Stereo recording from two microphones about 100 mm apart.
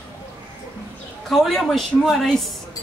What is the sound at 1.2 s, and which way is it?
A woman's voice, centre (ahead or behind).